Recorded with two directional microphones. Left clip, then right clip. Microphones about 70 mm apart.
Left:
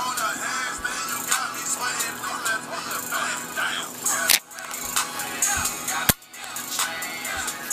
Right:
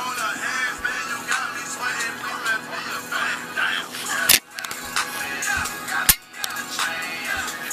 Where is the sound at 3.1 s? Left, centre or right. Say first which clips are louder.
Right 3 dB; left.